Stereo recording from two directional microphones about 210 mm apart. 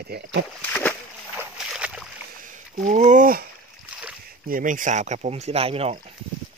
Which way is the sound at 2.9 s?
35° right (ahead or behind).